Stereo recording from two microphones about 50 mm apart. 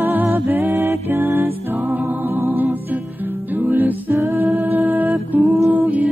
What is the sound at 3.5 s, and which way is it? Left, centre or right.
Music, right.